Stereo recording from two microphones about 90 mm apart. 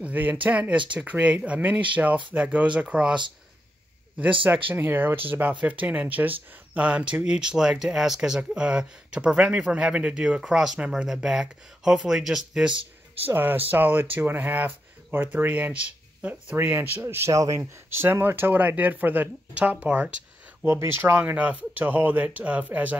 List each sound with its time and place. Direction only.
0.0 s speech: 20° right (ahead or behind)
4.2 s speech: 15° right (ahead or behind)
12.7 s a sound: 90° right
13.3 s speech: 20° right (ahead or behind); by 17.6 s 35° right (ahead or behind)
17.8 s speech: 25° right (ahead or behind)